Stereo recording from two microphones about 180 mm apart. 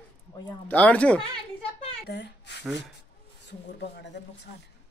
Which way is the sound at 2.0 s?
70° left (ahead or behind).